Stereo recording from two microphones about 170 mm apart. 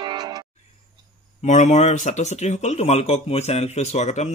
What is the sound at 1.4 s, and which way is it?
Speech, 45° left (ahead or behind).